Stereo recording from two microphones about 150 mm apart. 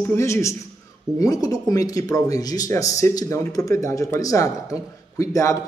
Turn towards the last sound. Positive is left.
turn(degrees=20)  # may be behind; listen again after turning